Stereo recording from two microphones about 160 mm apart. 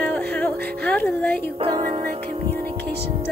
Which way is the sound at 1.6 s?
30° right (ahead or behind).